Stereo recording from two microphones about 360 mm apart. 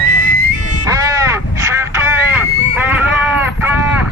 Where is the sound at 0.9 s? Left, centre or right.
Centre.